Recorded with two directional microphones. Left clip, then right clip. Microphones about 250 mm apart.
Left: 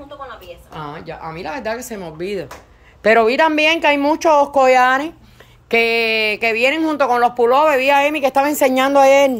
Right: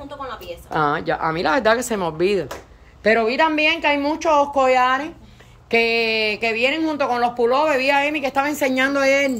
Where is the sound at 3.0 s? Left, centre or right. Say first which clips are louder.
Left 4 dB; centre.